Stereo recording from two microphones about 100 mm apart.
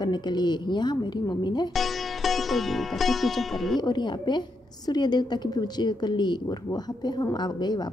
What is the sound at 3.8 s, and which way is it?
A woman's voice, 45° left (ahead or behind).